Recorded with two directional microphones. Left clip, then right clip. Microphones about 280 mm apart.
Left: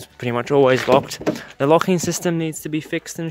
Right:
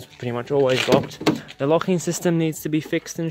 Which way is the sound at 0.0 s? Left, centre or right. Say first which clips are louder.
Left 5 dB; left.